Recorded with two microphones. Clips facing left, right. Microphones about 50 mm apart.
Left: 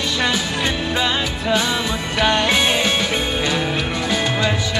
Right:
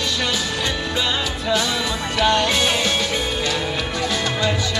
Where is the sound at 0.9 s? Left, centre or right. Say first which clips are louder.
Left 2 dB; left.